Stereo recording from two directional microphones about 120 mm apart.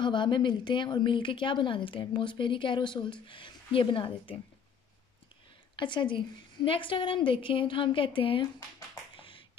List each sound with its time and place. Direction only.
0.0 s speech: 40° left (ahead or behind)
5.8 s speech: 40° left (ahead or behind)
9.1 s a sound: 45° left (ahead or behind)